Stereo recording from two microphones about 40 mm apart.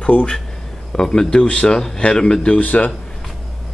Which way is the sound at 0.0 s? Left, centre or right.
Left.